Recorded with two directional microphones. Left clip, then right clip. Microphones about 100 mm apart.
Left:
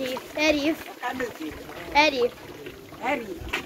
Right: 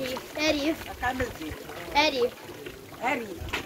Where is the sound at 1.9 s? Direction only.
30° left (ahead or behind).